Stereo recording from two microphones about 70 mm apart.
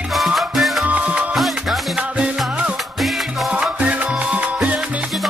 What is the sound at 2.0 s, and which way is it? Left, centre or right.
Music, centre.